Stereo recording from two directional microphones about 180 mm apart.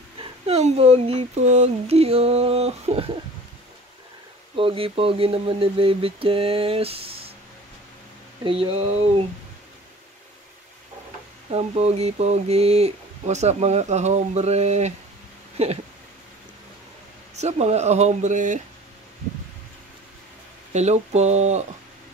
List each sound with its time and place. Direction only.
0.2 s speech: 35° right (ahead or behind)
4.6 s speech: 30° right (ahead or behind)
8.5 s speech: 30° right (ahead or behind)
11.5 s speech: 35° right (ahead or behind)
15.5 s a sound: 35° right (ahead or behind)
17.4 s speech: 40° right (ahead or behind)
20.7 s speech: 40° right (ahead or behind)